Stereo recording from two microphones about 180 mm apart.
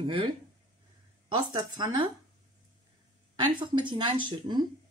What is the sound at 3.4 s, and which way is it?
Speech, 25° right (ahead or behind).